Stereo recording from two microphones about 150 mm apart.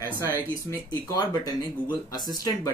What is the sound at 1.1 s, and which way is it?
Speech, 25° left (ahead or behind).